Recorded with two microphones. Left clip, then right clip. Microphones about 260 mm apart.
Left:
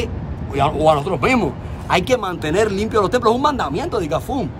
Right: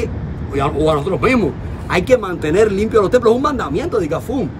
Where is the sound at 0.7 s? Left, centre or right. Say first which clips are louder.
Even; centre.